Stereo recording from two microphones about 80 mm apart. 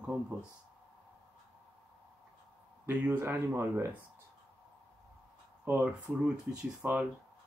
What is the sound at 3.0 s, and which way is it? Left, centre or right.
Speech, right.